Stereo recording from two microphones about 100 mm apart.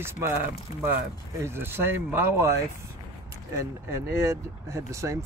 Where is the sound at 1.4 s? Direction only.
25° right (ahead or behind).